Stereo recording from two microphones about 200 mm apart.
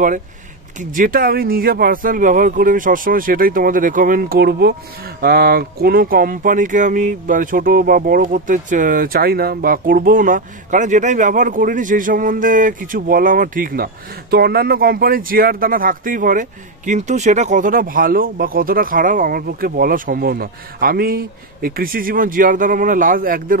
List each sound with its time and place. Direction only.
0.7 s speech: 45° right (ahead or behind)